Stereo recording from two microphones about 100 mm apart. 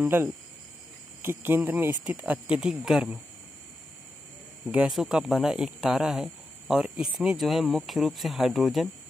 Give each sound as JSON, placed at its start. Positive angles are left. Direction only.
{"t": 0.0, "sound": "speech", "side_deg": -20}
{"t": 4.6, "sound": "speech", "side_deg": -10}